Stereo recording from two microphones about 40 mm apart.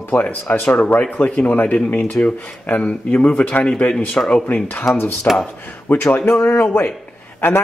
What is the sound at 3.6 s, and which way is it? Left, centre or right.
Speech, left.